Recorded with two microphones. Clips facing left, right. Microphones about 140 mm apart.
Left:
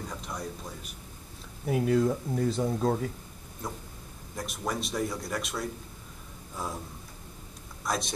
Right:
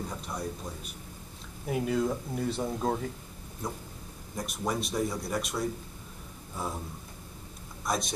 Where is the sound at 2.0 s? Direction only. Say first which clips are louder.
Left 3 dB; 40° left (ahead or behind).